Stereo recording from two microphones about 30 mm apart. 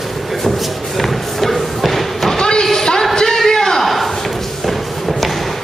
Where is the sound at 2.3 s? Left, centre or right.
Left.